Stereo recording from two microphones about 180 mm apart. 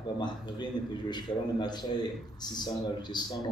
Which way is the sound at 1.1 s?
25° left (ahead or behind).